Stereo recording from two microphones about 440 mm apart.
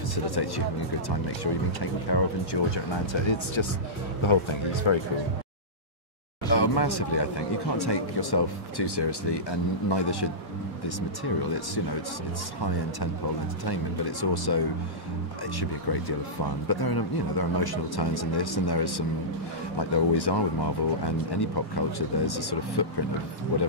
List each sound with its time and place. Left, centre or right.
0.1 s speech: left
6.5 s speech: left
14.3 s speech: left
15.9 s speech: left